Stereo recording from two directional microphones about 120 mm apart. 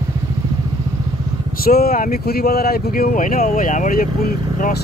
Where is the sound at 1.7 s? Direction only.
90° left.